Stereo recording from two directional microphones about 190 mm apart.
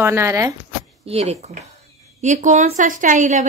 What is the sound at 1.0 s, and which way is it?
A woman's voice, 35° right (ahead or behind).